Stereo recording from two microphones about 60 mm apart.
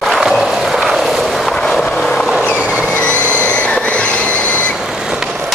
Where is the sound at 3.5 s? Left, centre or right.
Left.